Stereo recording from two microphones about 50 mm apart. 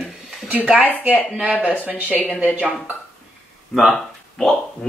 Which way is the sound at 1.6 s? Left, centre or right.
Left.